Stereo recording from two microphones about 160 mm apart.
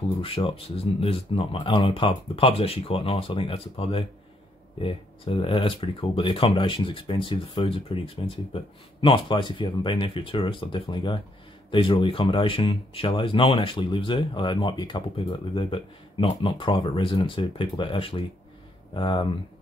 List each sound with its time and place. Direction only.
0.2 s speech: 35° left (ahead or behind)